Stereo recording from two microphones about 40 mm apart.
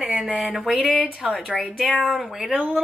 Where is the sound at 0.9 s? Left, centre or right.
Right.